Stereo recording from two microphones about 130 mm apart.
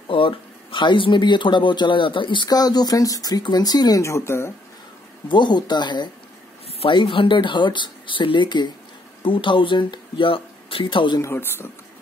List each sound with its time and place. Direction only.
0.1 s speech: 40° left (ahead or behind); by 4.5 s 20° left (ahead or behind)
5.3 s speech: 35° left (ahead or behind)
11.1 s speech: 20° left (ahead or behind)